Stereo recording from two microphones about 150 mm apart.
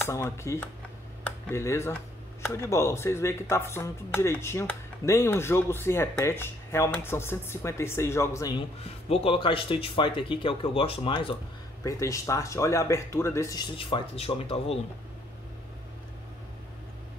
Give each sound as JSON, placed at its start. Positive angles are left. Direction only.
{"t": 0.0, "sound": "speech", "side_deg": 20}
{"t": 9.1, "sound": "speech", "side_deg": 40}
{"t": 11.8, "sound": "speech", "side_deg": 20}
{"t": 13.7, "sound": "speech", "side_deg": 35}